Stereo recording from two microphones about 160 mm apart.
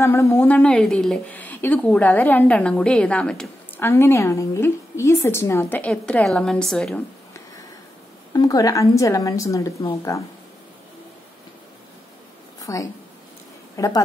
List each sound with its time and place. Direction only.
0.0 s a woman's voice: 15° left (ahead or behind)
3.8 s a woman's voice: 15° left (ahead or behind)
8.3 s a woman's voice: 20° left (ahead or behind)
12.6 s a woman's voice: 20° left (ahead or behind)